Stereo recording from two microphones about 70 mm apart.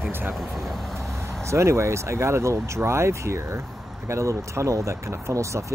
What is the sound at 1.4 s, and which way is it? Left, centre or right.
Speech, right.